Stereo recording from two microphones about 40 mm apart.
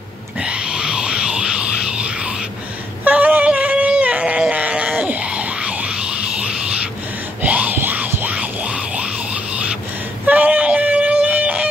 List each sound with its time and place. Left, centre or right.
0.4 s music: right
3.0 s female singing: right
3.4 s a sound: right
5.3 s music: right
10.2 s a sound: right
11.2 s music: right